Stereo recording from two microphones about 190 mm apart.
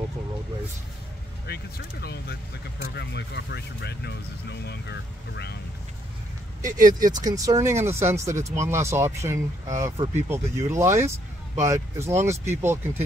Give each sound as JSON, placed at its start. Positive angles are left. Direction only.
{"t": 1.5, "sound": "speech", "side_deg": 55}
{"t": 6.6, "sound": "speech", "side_deg": -20}